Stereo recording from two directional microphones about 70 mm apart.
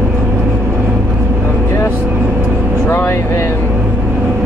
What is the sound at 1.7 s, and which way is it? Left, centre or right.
Vehicle, left.